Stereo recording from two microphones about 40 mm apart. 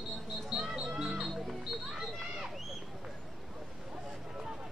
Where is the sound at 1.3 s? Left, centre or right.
Centre.